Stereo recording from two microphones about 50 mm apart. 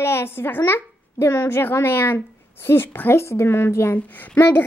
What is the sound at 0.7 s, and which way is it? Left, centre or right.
A child's voice, left.